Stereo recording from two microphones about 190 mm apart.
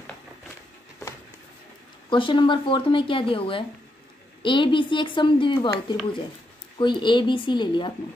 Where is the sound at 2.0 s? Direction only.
25° left (ahead or behind).